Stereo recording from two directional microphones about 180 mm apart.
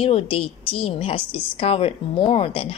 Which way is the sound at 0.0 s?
30° left (ahead or behind).